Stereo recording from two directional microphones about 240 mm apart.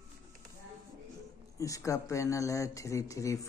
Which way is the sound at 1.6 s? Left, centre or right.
Centre.